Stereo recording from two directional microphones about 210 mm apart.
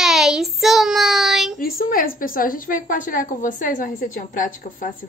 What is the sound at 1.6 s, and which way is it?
A woman's voice, 45° left (ahead or behind).